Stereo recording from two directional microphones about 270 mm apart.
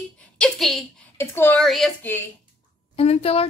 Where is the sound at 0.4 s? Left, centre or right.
Centre.